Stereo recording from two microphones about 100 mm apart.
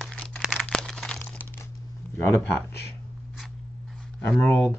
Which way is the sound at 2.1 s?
25° left (ahead or behind).